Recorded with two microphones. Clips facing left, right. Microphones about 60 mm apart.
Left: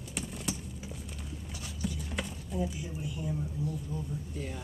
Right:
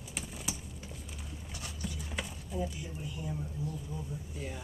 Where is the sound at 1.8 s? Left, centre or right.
Centre.